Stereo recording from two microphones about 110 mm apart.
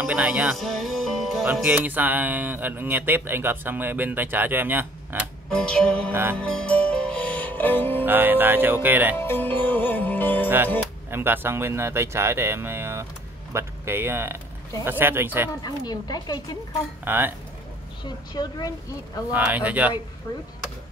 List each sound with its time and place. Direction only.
0.0 s speech: 10° right (ahead or behind)
0.6 s music: centre (ahead or behind)
1.5 s speech: 15° right (ahead or behind)
5.5 s music: 5° left (ahead or behind)
8.0 s speech: 15° right (ahead or behind)
9.1 s music: 20° left (ahead or behind)
11.1 s speech: 20° right (ahead or behind)
15.6 s speech: 40° left (ahead or behind)
17.0 s speech: 20° right (ahead or behind)
18.0 s speech: 35° left (ahead or behind)
19.3 s speech: 15° right (ahead or behind)
20.3 s speech: 30° left (ahead or behind)